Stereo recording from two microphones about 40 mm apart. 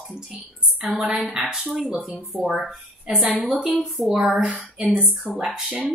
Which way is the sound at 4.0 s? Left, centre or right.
Centre.